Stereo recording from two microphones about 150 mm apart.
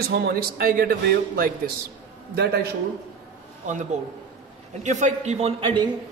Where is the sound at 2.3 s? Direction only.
90° right.